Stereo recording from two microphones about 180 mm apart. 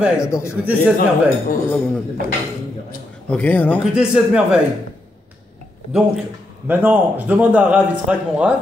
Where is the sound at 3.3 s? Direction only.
10° left (ahead or behind).